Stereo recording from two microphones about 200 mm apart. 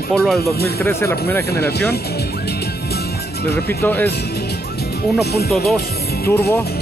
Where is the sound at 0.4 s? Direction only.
50° left (ahead or behind).